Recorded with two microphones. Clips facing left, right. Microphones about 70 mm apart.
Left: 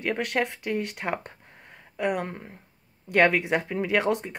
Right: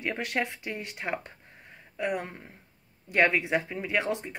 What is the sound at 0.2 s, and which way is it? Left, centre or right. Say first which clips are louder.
Speech: left 4 dB; left.